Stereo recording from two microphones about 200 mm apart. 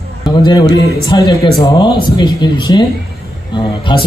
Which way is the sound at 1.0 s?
20° left (ahead or behind).